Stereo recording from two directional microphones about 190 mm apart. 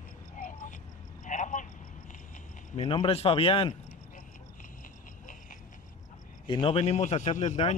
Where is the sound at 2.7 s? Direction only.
30° left (ahead or behind).